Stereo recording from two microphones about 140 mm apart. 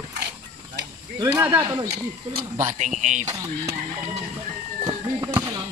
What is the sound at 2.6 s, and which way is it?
Speech, 60° right (ahead or behind).